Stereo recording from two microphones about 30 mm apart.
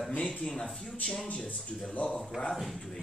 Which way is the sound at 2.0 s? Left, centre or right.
Left.